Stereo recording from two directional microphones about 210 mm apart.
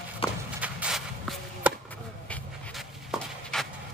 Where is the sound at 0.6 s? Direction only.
5° right (ahead or behind).